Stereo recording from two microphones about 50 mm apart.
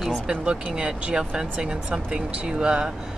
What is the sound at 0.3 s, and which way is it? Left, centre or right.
Speech, centre.